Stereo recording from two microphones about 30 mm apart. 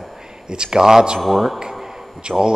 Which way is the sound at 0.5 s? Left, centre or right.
Right.